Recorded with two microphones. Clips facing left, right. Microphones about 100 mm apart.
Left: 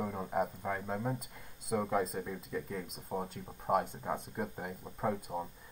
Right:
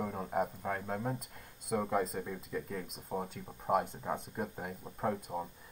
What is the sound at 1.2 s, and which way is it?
Speech, 55° right (ahead or behind).